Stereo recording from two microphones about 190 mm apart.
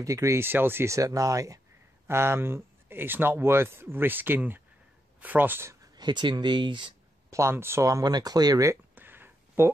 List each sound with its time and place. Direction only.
0.0 s a man's voice: 15° right (ahead or behind)